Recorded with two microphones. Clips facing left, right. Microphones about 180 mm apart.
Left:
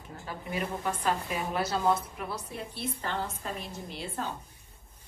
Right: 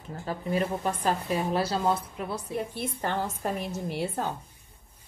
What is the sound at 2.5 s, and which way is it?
Speech, 50° right (ahead or behind).